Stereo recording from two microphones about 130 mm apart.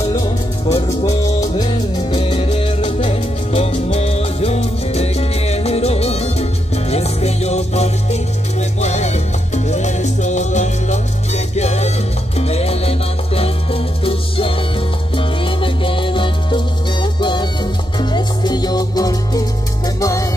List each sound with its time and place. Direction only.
0.7 s music: 55° left (ahead or behind)
1.6 s music: 35° left (ahead or behind)